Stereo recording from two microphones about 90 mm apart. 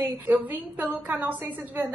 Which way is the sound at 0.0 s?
20° right (ahead or behind).